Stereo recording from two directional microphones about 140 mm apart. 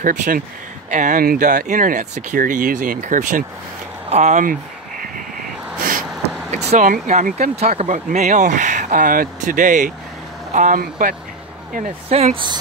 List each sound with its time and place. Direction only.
0.0 s speech: 65° right (ahead or behind)
4.1 s speech: 55° right (ahead or behind)
5.0 s a sound: 85° right
6.5 s speech: 50° right (ahead or behind)
6.8 s speech: 65° right (ahead or behind)
12.1 s speech: 45° right (ahead or behind)